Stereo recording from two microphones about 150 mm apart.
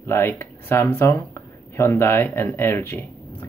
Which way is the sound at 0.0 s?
15° left (ahead or behind).